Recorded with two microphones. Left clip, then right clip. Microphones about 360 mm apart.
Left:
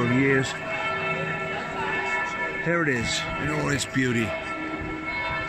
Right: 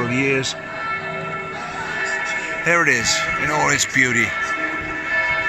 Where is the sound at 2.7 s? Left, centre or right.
Right.